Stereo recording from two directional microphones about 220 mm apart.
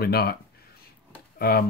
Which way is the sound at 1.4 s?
45° left (ahead or behind).